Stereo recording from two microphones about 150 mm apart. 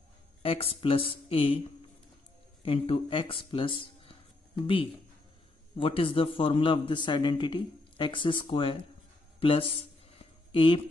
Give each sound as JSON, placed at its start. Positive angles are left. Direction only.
{"t": 0.4, "sound": "a man's voice", "side_deg": 40}
{"t": 2.6, "sound": "speech", "side_deg": 40}
{"t": 5.8, "sound": "a man's voice", "side_deg": 35}
{"t": 10.1, "sound": "a sound", "side_deg": 35}